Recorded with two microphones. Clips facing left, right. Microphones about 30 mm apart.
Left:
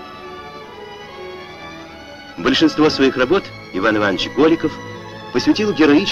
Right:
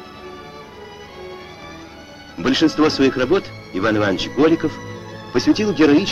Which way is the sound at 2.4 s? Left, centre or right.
Centre.